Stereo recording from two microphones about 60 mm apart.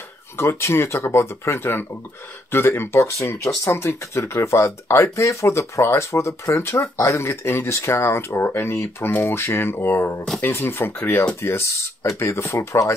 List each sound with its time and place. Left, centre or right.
0.4 s speech: left